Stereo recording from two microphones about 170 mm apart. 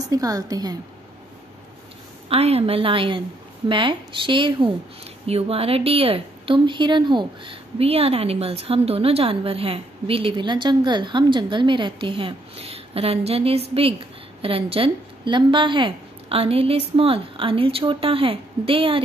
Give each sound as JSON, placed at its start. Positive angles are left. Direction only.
{"t": 0.1, "sound": "a woman's voice", "side_deg": -20}
{"t": 2.2, "sound": "a woman's voice", "side_deg": -35}